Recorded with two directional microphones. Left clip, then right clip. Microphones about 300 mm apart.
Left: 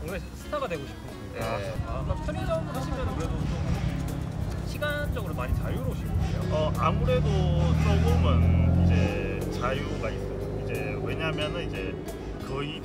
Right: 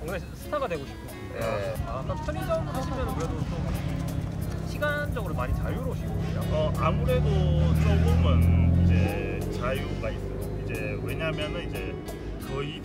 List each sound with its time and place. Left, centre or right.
0.5 s speech: centre
2.5 s speech: centre
4.8 s speech: centre
6.5 s speech: centre
7.5 s speech: left
8.2 s speech: centre
11.1 s speech: centre